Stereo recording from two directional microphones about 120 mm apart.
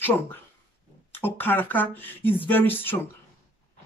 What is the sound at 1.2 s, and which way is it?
Speech, 15° left (ahead or behind).